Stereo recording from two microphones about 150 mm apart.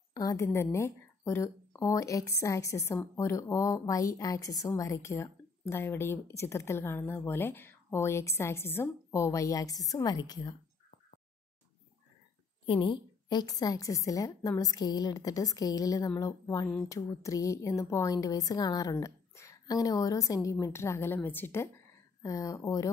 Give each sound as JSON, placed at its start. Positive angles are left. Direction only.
{"t": 0.1, "sound": "a woman's voice", "side_deg": 25}
{"t": 12.6, "sound": "a woman's voice", "side_deg": 35}